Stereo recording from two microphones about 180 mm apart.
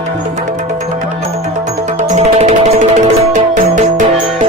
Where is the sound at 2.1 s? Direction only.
35° right (ahead or behind).